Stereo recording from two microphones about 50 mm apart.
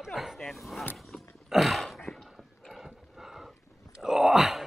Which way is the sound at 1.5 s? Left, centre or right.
Centre.